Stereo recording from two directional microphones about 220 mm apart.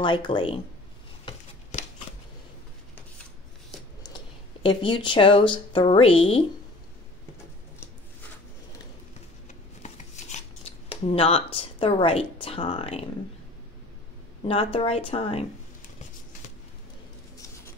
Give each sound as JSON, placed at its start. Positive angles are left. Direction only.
{"t": 0.0, "sound": "speech", "side_deg": 20}
{"t": 1.2, "sound": "a sound", "side_deg": 25}
{"t": 4.6, "sound": "speech", "side_deg": 20}
{"t": 9.8, "sound": "shuffling cards", "side_deg": 30}
{"t": 14.4, "sound": "speech", "side_deg": 25}